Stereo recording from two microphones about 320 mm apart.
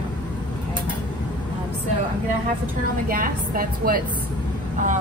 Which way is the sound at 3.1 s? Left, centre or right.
Right.